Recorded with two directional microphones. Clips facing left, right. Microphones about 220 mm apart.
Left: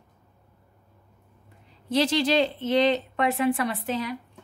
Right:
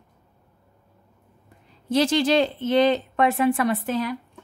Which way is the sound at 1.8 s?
50° right (ahead or behind).